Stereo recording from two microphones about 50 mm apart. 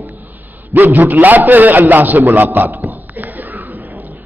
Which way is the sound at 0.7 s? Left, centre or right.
Right.